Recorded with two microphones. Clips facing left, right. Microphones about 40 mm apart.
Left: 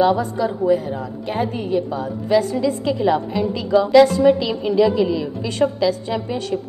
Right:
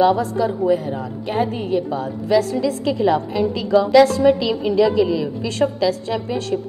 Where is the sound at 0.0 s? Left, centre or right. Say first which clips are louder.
Right 1 dB; centre.